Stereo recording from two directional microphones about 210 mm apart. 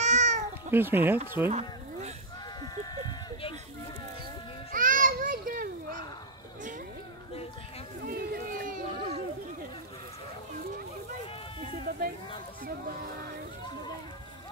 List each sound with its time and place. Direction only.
0.0 s cat: 35° right (ahead or behind)
0.7 s speech: 10° right (ahead or behind)
1.5 s a sound: 30° right (ahead or behind)
2.6 s sheep: 20° left (ahead or behind)
4.7 s children playing: 40° right (ahead or behind)
8.0 s a sound: 45° right (ahead or behind)